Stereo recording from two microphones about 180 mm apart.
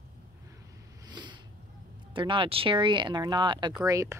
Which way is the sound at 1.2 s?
25° right (ahead or behind).